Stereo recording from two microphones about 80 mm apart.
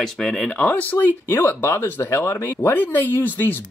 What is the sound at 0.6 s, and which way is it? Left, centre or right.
Speech, centre.